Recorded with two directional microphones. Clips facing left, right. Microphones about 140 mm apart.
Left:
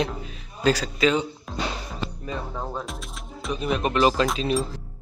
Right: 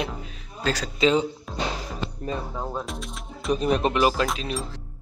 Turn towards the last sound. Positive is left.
turn(degrees=0)  # may be behind; listen again after turning